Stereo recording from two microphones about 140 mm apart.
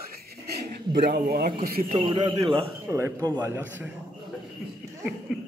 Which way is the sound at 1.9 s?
35° right (ahead or behind).